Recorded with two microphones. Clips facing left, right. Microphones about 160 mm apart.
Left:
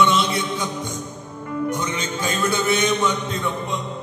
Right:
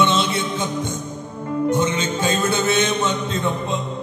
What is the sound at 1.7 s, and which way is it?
A man's voice, 25° right (ahead or behind).